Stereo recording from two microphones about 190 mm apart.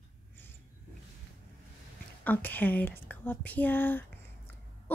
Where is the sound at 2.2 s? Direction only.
10° left (ahead or behind).